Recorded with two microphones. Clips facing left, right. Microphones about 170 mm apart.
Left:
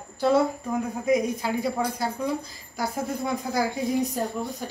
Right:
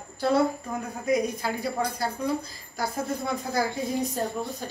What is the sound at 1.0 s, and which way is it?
A woman's voice, 20° left (ahead or behind).